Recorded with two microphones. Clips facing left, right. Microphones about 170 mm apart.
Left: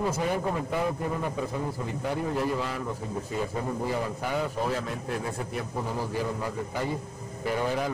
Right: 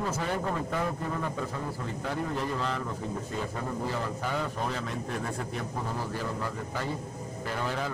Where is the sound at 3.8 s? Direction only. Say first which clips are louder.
Left 2 dB; 10° left (ahead or behind).